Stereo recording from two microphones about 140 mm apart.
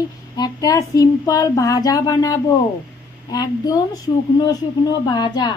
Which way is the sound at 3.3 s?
25° left (ahead or behind).